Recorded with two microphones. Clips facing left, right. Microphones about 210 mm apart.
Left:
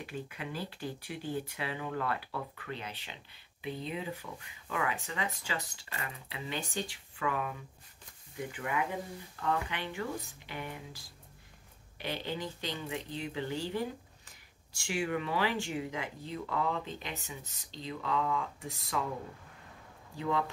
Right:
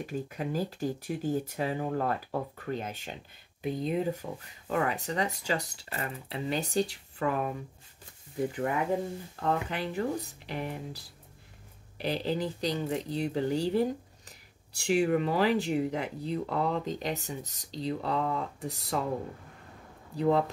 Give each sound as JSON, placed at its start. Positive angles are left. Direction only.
{"t": 0.0, "sound": "speech", "side_deg": -40}
{"t": 8.5, "sound": "speech", "side_deg": -40}
{"t": 20.2, "sound": "speech", "side_deg": -35}